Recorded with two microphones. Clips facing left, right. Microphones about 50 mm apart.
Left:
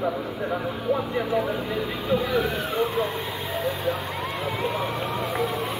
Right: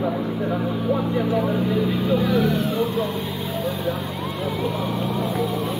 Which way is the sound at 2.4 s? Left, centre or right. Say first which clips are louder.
Right 3 dB; left.